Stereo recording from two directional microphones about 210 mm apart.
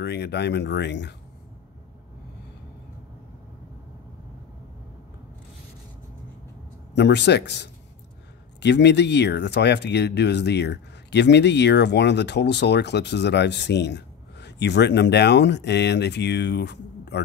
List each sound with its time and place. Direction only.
0.0 s speech: 50° left (ahead or behind)
7.0 s speech: 55° left (ahead or behind)